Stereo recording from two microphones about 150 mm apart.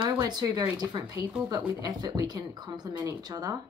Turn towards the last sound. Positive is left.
turn(degrees=-25)  # may be behind; listen again after turning